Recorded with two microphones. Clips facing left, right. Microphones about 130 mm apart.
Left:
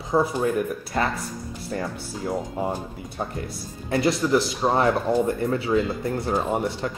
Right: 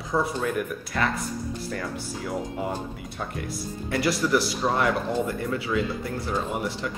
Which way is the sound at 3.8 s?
25° left (ahead or behind).